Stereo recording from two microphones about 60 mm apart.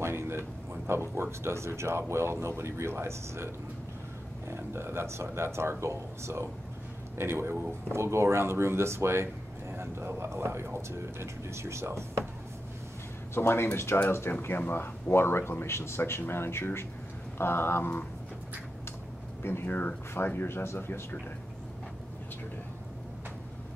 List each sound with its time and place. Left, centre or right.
0.0 s a sound: right
0.8 s speech: right
13.3 s speech: left
19.4 s speech: left